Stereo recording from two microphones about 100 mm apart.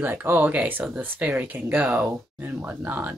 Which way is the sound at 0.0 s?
20° right (ahead or behind).